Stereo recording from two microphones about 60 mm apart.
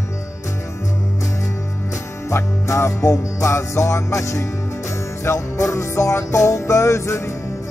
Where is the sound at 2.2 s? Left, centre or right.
Left.